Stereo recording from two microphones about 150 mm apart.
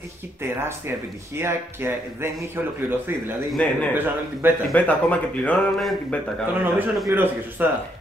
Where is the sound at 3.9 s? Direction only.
15° right (ahead or behind).